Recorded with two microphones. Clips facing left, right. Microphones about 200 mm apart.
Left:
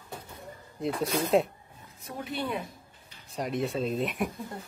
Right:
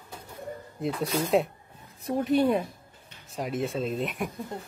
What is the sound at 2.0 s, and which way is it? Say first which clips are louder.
Speech: right 11 dB; 40° right (ahead or behind).